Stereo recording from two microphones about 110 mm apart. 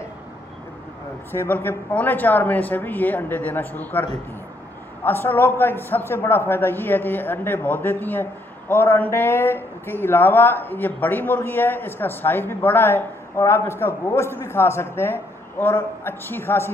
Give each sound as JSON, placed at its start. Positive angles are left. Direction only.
{"t": 1.3, "sound": "a man's voice", "side_deg": 20}